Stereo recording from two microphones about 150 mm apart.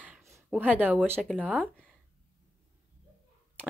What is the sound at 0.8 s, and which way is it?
Speech, 10° right (ahead or behind).